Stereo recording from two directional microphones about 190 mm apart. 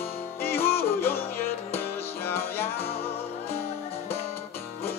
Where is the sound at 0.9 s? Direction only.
10° left (ahead or behind).